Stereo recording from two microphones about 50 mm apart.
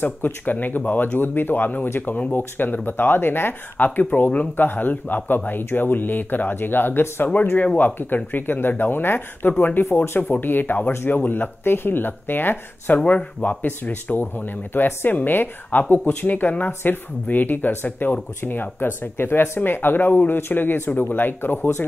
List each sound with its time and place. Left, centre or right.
0.0 s speech: left
7.3 s speech: left
10.0 s speech: left
10.3 s speech: left
13.0 s speech: left